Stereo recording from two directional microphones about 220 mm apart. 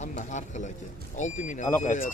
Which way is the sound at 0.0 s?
35° left (ahead or behind).